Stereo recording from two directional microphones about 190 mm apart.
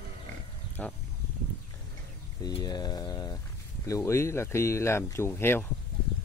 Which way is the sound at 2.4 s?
20° left (ahead or behind).